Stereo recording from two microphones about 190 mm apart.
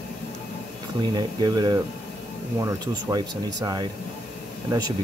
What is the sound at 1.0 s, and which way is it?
Speech, 20° right (ahead or behind).